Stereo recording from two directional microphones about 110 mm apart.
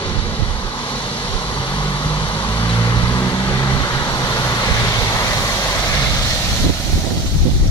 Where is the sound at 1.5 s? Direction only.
45° left (ahead or behind).